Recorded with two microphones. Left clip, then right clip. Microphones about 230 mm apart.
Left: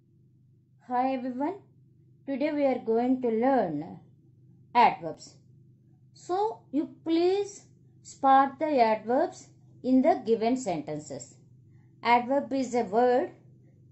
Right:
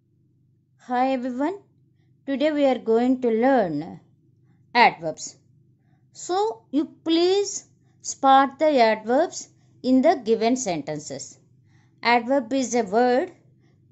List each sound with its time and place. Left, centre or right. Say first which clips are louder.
0.8 s speech: right 5 dB; right
12.0 s speech: right 4 dB; right